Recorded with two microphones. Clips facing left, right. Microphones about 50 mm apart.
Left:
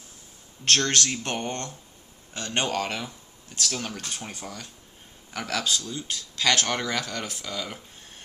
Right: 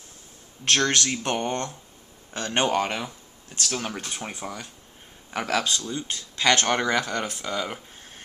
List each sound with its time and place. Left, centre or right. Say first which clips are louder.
0.7 s speech: right 1 dB; centre